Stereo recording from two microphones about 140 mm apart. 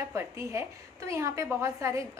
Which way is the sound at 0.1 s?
20° right (ahead or behind).